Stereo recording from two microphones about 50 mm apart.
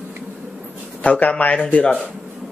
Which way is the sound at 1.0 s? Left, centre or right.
Left.